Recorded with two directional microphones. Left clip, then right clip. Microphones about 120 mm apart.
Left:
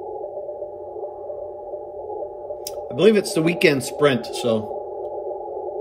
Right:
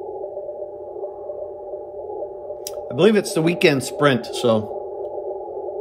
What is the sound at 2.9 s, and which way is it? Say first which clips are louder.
Speech: even; 20° right (ahead or behind).